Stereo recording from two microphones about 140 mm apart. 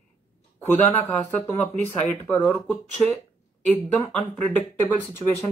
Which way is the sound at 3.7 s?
10° left (ahead or behind).